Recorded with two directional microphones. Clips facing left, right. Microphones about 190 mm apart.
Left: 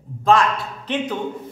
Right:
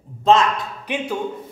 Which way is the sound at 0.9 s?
10° right (ahead or behind).